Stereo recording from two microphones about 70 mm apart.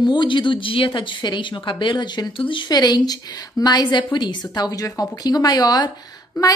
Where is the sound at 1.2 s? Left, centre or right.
Left.